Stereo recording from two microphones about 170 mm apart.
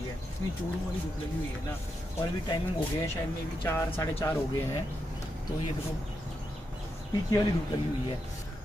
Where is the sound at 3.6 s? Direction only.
15° left (ahead or behind).